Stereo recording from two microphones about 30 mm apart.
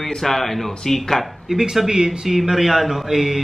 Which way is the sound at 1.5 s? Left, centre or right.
Centre.